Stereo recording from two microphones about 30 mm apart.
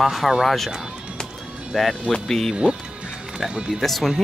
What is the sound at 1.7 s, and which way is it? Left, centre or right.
Speech, centre.